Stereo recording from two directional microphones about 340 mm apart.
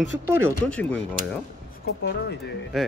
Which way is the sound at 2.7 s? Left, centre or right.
Centre.